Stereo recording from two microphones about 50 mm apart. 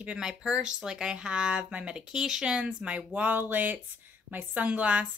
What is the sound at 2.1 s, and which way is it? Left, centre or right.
Speech, centre.